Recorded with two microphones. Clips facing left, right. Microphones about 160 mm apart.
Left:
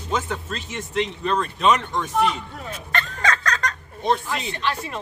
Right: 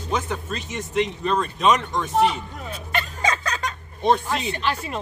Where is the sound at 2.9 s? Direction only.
10° right (ahead or behind).